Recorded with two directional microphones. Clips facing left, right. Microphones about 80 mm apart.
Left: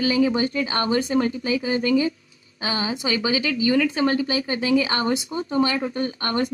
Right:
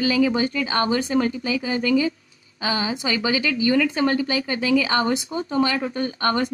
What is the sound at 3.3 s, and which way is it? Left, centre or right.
Speech, right.